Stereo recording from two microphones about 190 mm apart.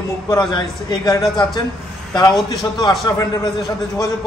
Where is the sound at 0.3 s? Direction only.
25° left (ahead or behind).